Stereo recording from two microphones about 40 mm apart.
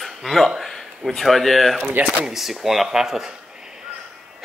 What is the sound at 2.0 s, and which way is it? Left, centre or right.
Speech, centre.